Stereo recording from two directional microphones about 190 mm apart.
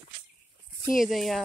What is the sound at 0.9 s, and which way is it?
Speech, centre (ahead or behind).